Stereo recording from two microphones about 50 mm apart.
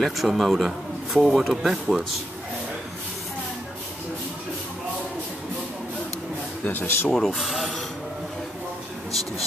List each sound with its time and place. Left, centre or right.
0.2 s speech: centre
6.6 s a man's voice: left
7.1 s speech: centre